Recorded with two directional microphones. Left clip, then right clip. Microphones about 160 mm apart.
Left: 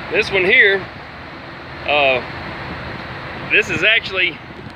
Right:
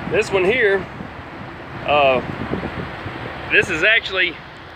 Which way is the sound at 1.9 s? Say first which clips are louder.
Even; 5° right (ahead or behind).